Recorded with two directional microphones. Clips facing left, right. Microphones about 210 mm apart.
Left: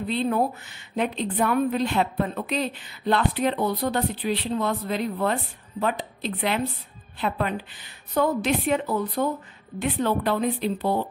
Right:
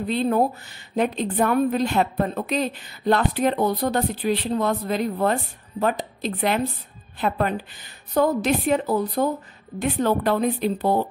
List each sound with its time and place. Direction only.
0.1 s a woman's voice: 40° right (ahead or behind)